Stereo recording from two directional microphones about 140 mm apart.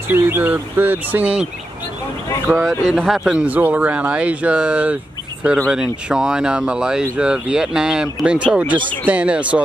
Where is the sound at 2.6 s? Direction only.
Centre (ahead or behind).